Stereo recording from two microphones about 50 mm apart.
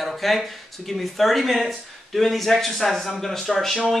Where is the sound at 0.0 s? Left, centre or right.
Centre.